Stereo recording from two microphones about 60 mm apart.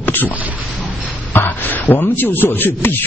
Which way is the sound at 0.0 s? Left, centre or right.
Left.